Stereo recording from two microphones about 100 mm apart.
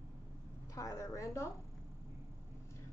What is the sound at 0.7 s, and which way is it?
Speech, 30° left (ahead or behind).